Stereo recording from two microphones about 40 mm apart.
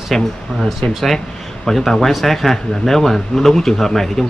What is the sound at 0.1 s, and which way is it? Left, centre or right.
Speech, centre.